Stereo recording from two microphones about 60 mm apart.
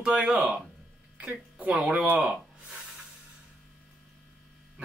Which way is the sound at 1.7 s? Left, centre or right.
Centre.